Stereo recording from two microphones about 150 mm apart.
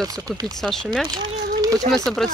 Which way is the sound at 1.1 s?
25° right (ahead or behind).